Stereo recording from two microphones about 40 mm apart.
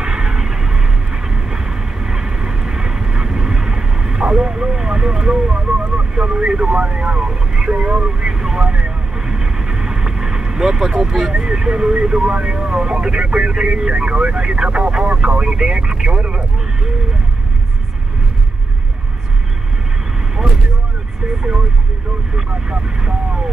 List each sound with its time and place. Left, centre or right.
0.0 s vehicle: centre
22.3 s vehicle: right